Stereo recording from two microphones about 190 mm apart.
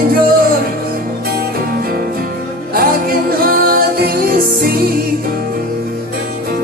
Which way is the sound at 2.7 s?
50° right (ahead or behind).